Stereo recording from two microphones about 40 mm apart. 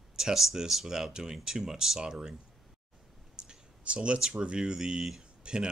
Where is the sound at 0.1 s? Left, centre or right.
Centre.